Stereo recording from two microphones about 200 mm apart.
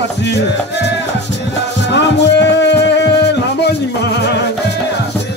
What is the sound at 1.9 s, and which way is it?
Music, 60° left (ahead or behind).